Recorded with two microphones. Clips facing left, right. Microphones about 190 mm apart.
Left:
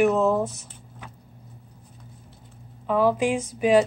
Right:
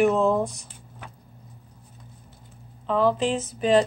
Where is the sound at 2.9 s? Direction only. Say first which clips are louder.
Left 1 dB; 10° left (ahead or behind).